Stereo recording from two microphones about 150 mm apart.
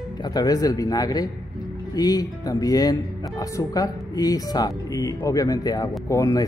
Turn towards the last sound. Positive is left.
turn(degrees=20)  # may be behind; listen again after turning